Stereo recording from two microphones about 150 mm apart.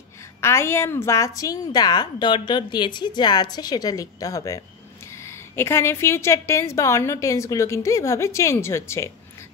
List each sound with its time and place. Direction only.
0.4 s a woman's voice: 15° left (ahead or behind)